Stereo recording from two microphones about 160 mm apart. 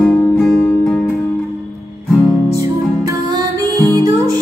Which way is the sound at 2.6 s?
20° right (ahead or behind).